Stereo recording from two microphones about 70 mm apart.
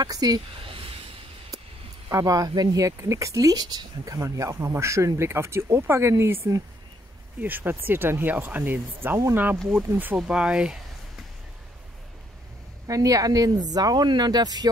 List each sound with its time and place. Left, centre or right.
0.0 s speech: right
2.0 s speech: right
7.3 s speech: right
10.1 s speech: centre
12.8 s speech: right